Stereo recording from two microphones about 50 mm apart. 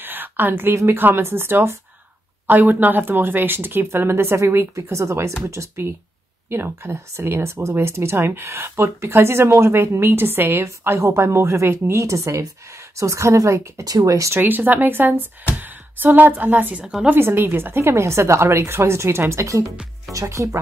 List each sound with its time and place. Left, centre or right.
0.0 s a sound: right
0.9 s speech: right
2.4 s speech: right
4.9 s speech: right
6.5 s speech: right
10.6 s speech: right
12.0 s speech: right
14.4 s a woman's voice: right
17.1 s speech: right
20.1 s speech: right